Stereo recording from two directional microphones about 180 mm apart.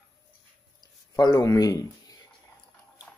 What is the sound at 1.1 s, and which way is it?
Speech, 20° left (ahead or behind).